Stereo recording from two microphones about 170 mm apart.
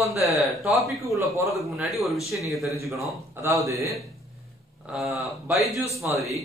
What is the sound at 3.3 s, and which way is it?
Speech, 15° right (ahead or behind).